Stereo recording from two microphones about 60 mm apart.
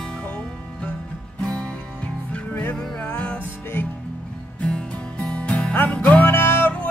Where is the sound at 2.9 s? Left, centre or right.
Left.